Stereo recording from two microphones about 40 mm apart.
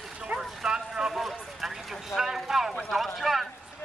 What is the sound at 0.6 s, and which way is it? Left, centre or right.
Speech, centre.